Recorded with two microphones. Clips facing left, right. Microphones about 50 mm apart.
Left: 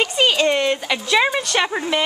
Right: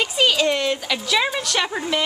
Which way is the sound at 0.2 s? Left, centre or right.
Centre.